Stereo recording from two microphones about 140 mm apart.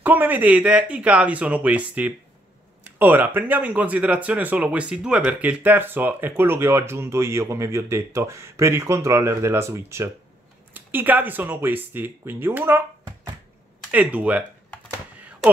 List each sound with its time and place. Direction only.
0.0 s speech: 10° right (ahead or behind)